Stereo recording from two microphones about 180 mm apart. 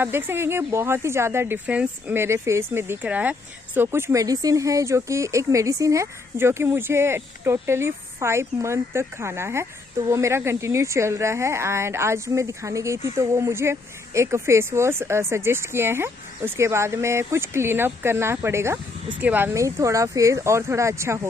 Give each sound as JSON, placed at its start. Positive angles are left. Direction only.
{"t": 0.0, "sound": "speech", "side_deg": -15}